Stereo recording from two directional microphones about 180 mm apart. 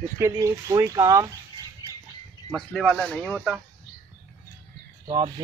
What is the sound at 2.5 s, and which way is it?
Speech, centre (ahead or behind).